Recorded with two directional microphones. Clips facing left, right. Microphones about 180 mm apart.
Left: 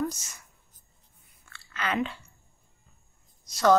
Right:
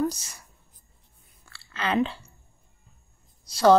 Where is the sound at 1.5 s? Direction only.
30° right (ahead or behind).